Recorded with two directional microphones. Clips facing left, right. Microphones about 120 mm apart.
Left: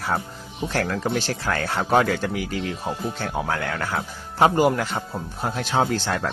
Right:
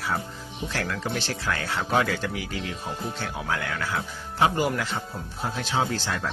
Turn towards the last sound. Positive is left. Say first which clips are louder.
# left 4 dB
turn(degrees=50)  # may be behind; listen again after turning